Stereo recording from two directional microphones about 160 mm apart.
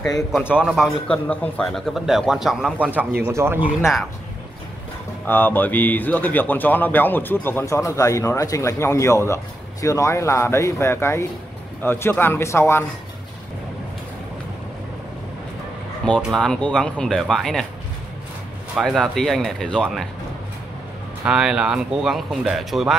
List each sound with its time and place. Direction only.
0.5 s a man's voice: 5° right (ahead or behind)
3.3 s speech: 15° right (ahead or behind)
5.2 s speech: 10° left (ahead or behind)
16.2 s a man's voice: centre (ahead or behind)
18.8 s a man's voice: centre (ahead or behind)
21.3 s a man's voice: 5° right (ahead or behind)